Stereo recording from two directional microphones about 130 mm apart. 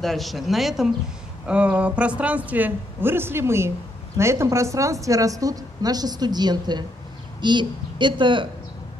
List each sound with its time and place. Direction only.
0.0 s a woman's voice: centre (ahead or behind); by 8.5 s 40° right (ahead or behind)